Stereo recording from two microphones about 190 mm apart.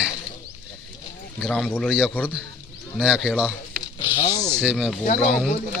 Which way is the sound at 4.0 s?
30° left (ahead or behind).